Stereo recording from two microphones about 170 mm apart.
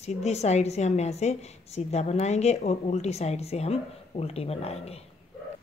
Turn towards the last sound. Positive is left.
turn(degrees=35)  # may be behind; listen again after turning